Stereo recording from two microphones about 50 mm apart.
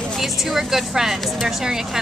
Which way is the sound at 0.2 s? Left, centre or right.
Centre.